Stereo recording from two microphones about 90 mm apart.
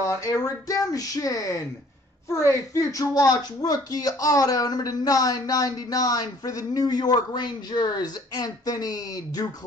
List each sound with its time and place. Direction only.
0.0 s speech: 35° left (ahead or behind)